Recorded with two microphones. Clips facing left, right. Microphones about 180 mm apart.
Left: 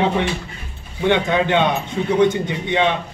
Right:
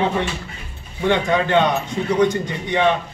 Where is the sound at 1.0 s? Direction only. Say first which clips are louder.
Left 1 dB; 15° left (ahead or behind).